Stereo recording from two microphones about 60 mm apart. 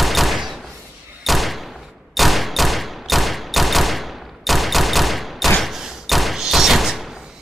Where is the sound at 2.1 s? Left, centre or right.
Centre.